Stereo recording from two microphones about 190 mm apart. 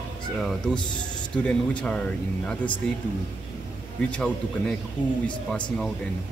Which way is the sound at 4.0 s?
5° left (ahead or behind).